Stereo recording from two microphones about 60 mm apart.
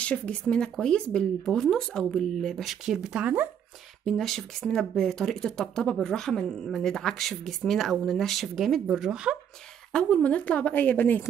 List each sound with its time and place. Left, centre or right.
0.0 s speech: centre
2.9 s speech: centre
4.0 s speech: centre
8.9 s speech: centre
9.9 s a woman's voice: centre